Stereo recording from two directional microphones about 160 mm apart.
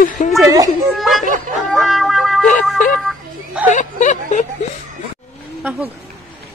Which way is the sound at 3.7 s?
50° left (ahead or behind).